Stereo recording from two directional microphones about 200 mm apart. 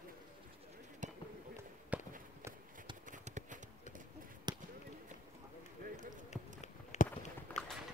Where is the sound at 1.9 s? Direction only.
5° right (ahead or behind).